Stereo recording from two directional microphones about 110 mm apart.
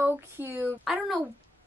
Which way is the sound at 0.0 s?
20° right (ahead or behind).